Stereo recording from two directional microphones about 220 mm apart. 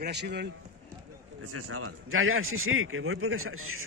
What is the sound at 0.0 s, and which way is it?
Speech, 50° right (ahead or behind).